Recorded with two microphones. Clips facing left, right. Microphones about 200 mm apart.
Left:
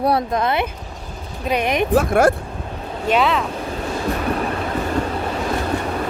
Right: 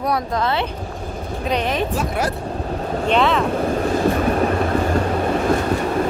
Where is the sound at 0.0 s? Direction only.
30° left (ahead or behind).